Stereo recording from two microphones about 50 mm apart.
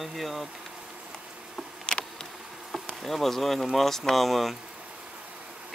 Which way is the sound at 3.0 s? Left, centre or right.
Centre.